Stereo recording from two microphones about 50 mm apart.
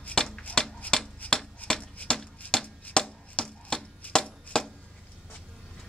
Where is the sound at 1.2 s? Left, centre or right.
Left.